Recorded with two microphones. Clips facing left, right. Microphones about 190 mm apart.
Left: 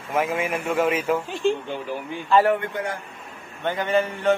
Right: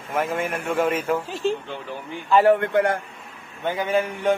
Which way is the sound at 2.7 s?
65° right (ahead or behind).